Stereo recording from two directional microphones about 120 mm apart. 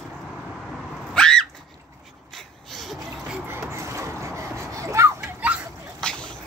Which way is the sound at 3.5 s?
25° right (ahead or behind).